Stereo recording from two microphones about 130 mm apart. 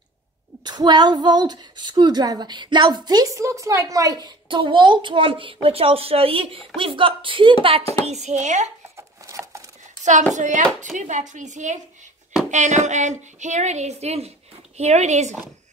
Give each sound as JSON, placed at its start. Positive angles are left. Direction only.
{"t": 0.7, "sound": "speech", "side_deg": -35}
{"t": 8.0, "sound": "speech", "side_deg": -60}
{"t": 8.9, "sound": "a sound", "side_deg": -25}
{"t": 10.3, "sound": "a woman's voice", "side_deg": -70}